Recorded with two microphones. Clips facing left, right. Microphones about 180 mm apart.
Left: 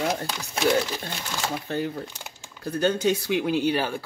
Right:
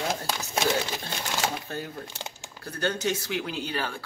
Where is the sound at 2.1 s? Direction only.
80° right.